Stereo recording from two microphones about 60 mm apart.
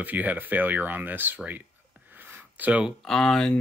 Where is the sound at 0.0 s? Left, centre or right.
Right.